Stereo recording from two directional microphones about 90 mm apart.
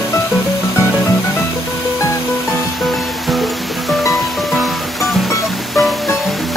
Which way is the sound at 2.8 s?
Centre (ahead or behind).